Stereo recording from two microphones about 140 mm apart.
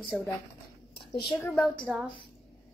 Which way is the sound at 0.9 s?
35° left (ahead or behind).